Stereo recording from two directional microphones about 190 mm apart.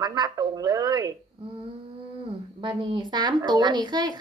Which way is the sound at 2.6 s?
25° right (ahead or behind).